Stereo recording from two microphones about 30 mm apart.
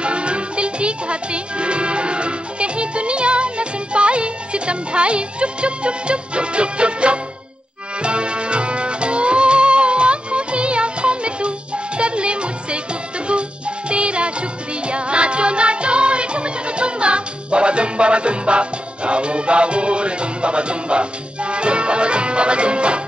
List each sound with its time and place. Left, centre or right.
0.0 s music: right